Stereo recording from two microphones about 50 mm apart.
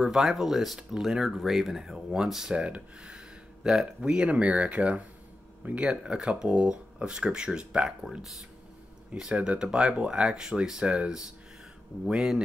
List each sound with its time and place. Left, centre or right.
0.0 s speech: centre
2.5 s speech: right
5.9 s speech: centre
8.2 s speech: centre
9.1 s speech: centre